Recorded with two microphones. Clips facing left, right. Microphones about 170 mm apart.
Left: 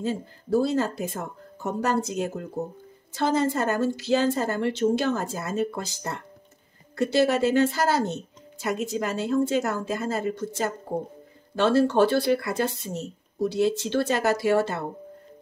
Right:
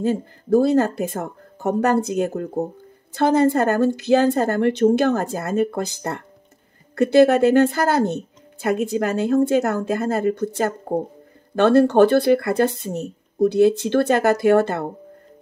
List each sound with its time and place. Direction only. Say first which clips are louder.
0.0 s a woman's voice: right 7 dB; 55° right (ahead or behind)